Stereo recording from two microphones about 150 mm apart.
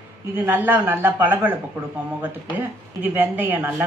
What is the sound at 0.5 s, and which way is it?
A woman's voice, 15° right (ahead or behind).